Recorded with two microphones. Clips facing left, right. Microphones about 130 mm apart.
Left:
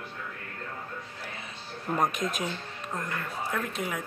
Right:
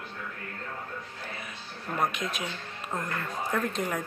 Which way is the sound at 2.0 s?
45° left (ahead or behind).